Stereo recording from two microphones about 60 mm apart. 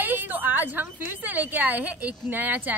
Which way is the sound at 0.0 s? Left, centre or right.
Right.